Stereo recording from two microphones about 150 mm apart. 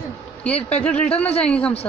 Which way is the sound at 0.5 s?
45° left (ahead or behind).